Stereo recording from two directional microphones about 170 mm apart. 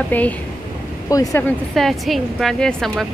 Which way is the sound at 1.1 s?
20° left (ahead or behind).